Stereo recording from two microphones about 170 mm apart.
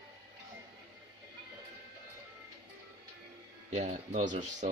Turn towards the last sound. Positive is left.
turn(degrees=-45)  # may be behind; listen again after turning